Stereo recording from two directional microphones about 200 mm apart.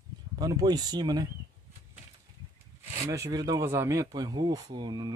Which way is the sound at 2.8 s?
15° right (ahead or behind).